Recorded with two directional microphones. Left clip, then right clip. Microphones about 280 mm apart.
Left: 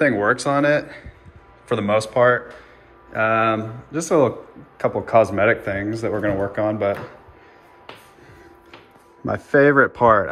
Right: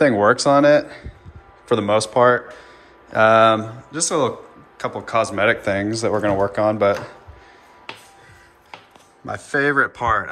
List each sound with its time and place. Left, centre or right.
0.0 s speech: centre
9.2 s speech: centre